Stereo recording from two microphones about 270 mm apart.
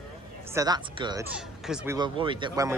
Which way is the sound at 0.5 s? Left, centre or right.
Centre.